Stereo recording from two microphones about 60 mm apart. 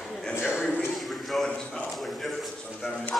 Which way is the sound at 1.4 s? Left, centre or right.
Centre.